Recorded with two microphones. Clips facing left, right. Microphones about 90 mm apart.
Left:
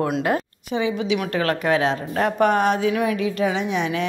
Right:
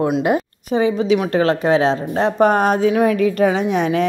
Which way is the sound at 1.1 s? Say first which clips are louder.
Right 6 dB; 25° right (ahead or behind).